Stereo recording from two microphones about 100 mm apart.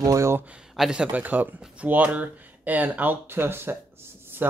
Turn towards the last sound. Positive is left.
turn(degrees=-25)  # may be behind; listen again after turning